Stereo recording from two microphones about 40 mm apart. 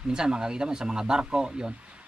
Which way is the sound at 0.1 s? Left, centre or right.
Centre.